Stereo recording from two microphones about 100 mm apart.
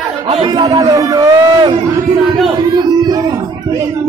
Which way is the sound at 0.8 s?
35° right (ahead or behind).